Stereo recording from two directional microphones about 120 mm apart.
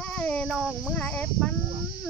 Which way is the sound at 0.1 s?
10° left (ahead or behind).